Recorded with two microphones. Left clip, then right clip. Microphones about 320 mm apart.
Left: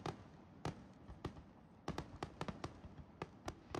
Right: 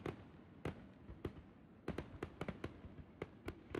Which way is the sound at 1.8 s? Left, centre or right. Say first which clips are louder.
Even; centre.